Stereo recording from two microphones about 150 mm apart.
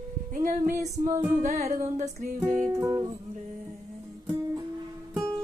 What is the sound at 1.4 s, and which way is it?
Music, 50° right (ahead or behind).